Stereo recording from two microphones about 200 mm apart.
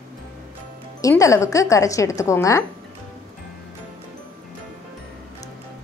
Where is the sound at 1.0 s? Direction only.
15° left (ahead or behind).